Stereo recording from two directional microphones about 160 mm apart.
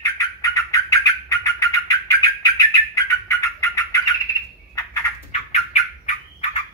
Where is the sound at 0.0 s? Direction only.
20° left (ahead or behind).